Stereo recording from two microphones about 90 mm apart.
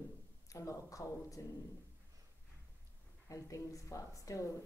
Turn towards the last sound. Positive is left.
turn(degrees=40)  # may be behind; listen again after turning